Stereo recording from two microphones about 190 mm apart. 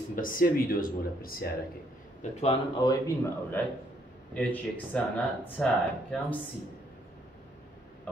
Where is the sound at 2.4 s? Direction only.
20° left (ahead or behind).